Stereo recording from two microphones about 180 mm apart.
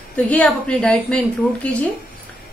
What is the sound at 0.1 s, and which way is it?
A woman's voice, 5° left (ahead or behind).